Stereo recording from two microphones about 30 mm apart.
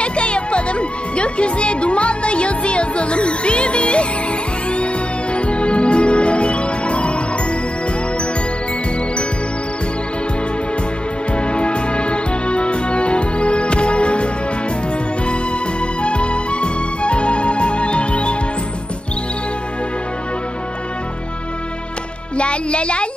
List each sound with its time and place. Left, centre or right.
0.0 s music: left
5.3 s music: left
11.3 s music: left
16.0 s music: left
22.4 s music: left